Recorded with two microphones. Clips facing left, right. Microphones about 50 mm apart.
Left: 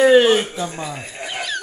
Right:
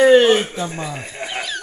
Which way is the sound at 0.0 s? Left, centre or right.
Centre.